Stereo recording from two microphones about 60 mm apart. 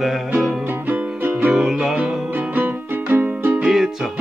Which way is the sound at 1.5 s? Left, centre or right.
Centre.